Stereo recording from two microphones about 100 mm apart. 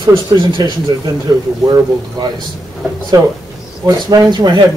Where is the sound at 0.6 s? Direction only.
45° right (ahead or behind).